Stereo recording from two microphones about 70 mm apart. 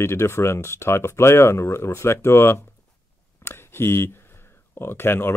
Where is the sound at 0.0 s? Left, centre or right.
Left.